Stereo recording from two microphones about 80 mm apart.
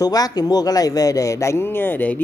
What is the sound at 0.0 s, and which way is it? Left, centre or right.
Speech, left.